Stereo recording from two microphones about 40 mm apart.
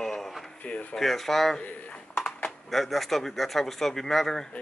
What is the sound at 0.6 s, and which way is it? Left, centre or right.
Speech, left.